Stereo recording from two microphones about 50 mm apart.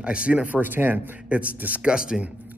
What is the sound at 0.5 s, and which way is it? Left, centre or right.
Speech, right.